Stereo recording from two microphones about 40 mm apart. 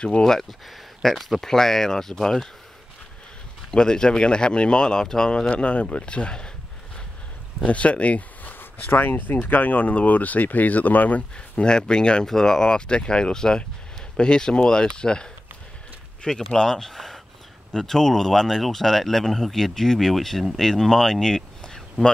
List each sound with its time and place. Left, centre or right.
0.2 s speech: centre
3.7 s speech: centre
5.5 s speech: left
7.6 s speech: left
8.5 s speech: left
11.3 s speech: left
16.5 s speech: centre
21.7 s a sound: centre